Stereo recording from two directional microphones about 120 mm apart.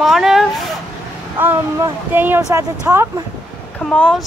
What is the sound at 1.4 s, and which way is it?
Speech, 15° right (ahead or behind).